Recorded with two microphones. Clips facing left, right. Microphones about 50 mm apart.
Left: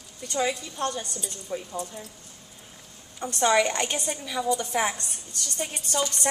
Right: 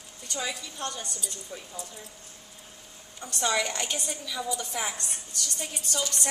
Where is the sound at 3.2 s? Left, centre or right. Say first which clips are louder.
Left 6 dB; left.